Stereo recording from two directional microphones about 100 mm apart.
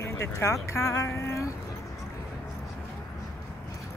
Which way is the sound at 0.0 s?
30° left (ahead or behind).